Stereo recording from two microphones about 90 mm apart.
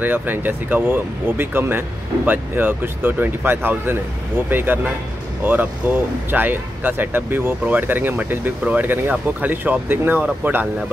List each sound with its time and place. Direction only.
0.0 s speech: 20° right (ahead or behind)